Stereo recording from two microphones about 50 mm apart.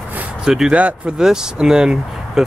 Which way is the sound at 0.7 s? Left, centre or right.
Right.